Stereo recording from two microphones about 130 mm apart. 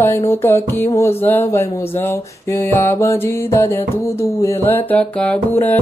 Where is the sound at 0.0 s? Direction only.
20° left (ahead or behind).